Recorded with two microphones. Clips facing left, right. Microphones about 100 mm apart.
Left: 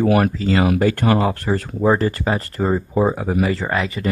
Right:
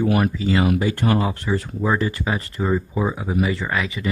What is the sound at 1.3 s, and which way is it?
Speech, 45° left (ahead or behind).